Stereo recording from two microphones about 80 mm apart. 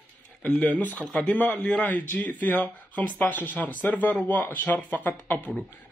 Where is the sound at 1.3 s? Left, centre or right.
Centre.